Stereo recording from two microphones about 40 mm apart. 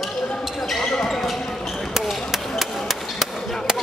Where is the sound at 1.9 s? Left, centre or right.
Centre.